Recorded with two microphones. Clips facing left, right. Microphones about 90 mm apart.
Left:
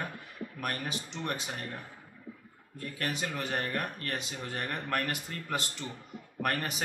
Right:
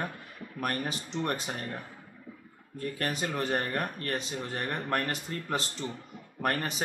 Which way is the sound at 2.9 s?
35° right (ahead or behind).